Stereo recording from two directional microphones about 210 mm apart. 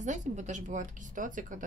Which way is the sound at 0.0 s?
35° right (ahead or behind).